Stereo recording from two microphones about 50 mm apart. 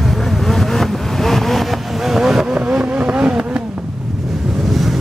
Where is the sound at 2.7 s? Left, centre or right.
Right.